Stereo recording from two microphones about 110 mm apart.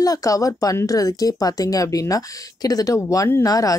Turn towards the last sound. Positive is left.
turn(degrees=30)  # may be behind; listen again after turning